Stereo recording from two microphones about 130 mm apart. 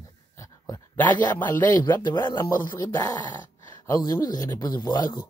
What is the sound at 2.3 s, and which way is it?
Dog, 25° left (ahead or behind).